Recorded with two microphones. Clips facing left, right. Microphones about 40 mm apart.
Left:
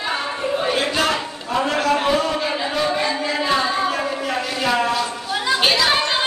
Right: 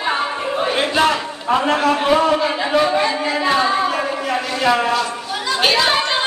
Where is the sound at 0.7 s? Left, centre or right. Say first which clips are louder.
Right 4 dB; right.